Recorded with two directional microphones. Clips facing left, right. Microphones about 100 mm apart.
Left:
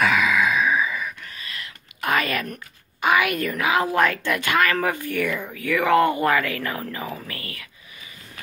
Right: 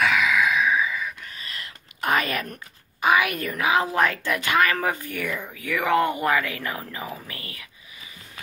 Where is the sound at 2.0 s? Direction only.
20° right (ahead or behind).